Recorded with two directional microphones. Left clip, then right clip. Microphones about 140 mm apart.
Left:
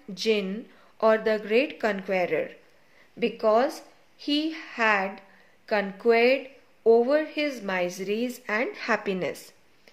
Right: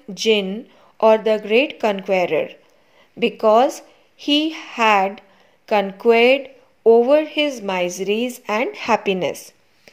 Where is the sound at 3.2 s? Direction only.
45° right (ahead or behind).